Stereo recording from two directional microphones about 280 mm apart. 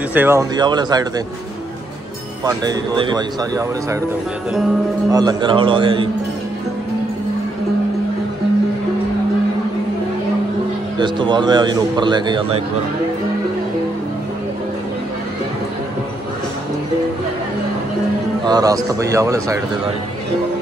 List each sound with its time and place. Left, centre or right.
0.1 s a man's voice: centre
2.4 s a man's voice: centre
5.1 s a man's voice: centre
11.0 s a man's voice: centre
18.4 s a man's voice: centre